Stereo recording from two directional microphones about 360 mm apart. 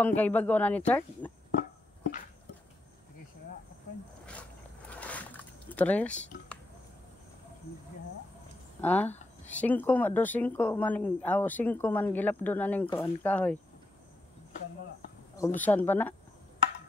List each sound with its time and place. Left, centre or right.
0.0 s speech: centre
1.6 s music: left
4.3 s zipper: centre
8.8 s speech: centre
15.3 s speech: centre